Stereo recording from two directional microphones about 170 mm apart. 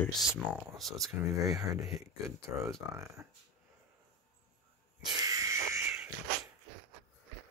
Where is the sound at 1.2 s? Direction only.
20° right (ahead or behind).